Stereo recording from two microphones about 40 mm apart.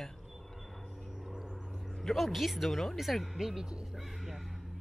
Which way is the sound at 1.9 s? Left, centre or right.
Centre.